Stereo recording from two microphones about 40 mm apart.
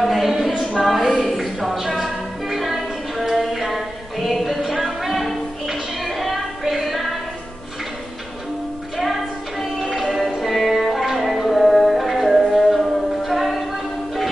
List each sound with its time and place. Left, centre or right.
0.0 s a sound: centre
1.2 s music: centre
1.9 s music: centre
2.4 s music: centre
8.9 s music: centre